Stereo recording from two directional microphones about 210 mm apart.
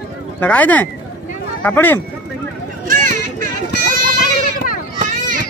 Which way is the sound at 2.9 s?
40° right (ahead or behind).